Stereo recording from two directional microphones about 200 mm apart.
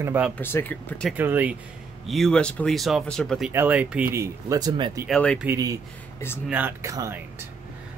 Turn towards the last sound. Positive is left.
turn(degrees=-15)  # may be behind; listen again after turning